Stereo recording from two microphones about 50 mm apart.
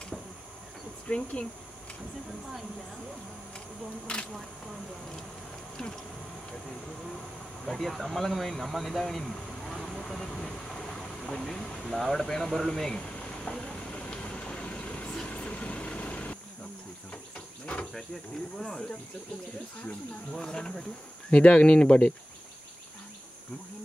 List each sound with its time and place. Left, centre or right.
1.0 s speech: left
4.1 s speech: centre
7.6 s speech: centre
13.0 s train: left
15.2 s vehicle: left
18.6 s speech: centre
20.3 s speech: centre
21.3 s speech: left